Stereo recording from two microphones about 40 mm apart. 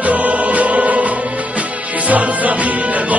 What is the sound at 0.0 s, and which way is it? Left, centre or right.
Music, right.